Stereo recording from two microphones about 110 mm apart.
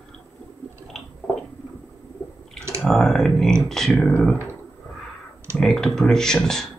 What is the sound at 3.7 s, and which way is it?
Speech, 5° left (ahead or behind).